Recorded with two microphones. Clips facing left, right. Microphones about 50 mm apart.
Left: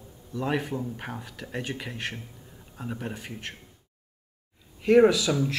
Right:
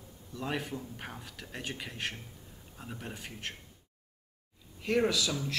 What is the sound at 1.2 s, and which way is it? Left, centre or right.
Speech, centre.